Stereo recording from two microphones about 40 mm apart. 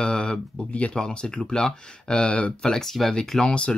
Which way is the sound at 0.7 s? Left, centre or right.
Left.